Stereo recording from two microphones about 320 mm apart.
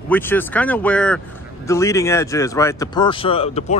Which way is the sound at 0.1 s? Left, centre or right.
Centre.